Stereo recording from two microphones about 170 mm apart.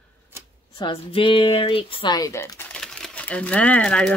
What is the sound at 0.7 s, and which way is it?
Speech, 30° left (ahead or behind).